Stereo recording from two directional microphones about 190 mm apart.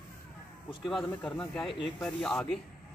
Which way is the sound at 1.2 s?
5° left (ahead or behind).